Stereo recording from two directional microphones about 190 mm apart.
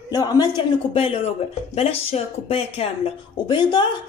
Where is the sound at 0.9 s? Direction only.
30° left (ahead or behind).